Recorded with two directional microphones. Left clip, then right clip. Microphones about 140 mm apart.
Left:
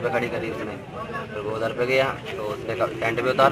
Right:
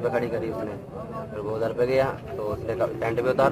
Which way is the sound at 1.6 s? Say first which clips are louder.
Left 1 dB; 40° right (ahead or behind).